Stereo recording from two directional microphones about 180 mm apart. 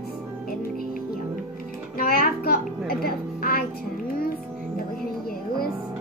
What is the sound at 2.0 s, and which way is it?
Music, 55° left (ahead or behind).